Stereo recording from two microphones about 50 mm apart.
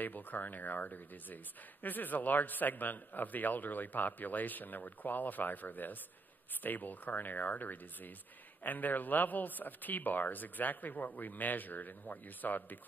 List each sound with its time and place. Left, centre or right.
0.0 s speech: left